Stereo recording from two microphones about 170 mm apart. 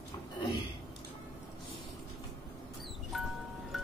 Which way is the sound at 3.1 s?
Centre (ahead or behind).